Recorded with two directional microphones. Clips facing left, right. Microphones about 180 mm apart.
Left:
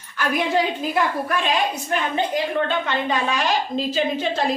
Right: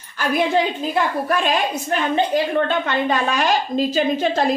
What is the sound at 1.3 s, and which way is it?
Speech, 45° right (ahead or behind).